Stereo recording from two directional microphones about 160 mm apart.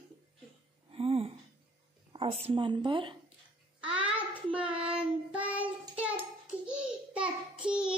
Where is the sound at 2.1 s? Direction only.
35° right (ahead or behind).